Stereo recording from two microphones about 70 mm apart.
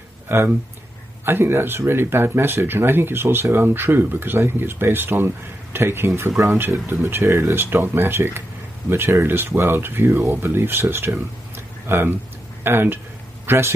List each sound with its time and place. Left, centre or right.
0.3 s speech: right
11.5 s a sound: right
12.6 s a man's voice: right